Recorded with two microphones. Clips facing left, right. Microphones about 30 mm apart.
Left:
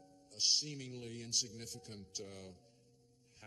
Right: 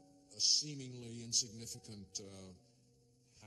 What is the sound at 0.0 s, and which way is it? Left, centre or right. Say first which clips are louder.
Speech: left 1 dB; left.